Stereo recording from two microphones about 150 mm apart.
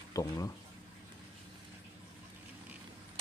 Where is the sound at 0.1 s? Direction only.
20° left (ahead or behind).